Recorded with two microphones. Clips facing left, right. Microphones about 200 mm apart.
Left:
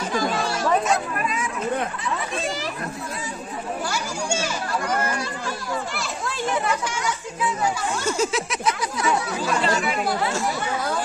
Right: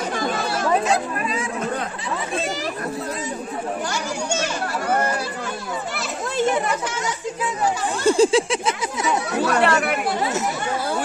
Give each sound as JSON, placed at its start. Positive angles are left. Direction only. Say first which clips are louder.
{"t": 0.1, "sound": "chatter", "louder": "even", "side_deg": -55}
{"t": 0.8, "sound": "chatter", "louder": "right 2 dB", "side_deg": -30}
{"t": 3.9, "sound": "children playing", "louder": "right 2 dB", "side_deg": 10}
{"t": 6.3, "sound": "children playing", "louder": "right 6 dB", "side_deg": -20}
{"t": 8.0, "sound": "speech", "louder": "right 10 dB", "side_deg": -30}
{"t": 9.4, "sound": "speech", "louder": "right 4 dB", "side_deg": -65}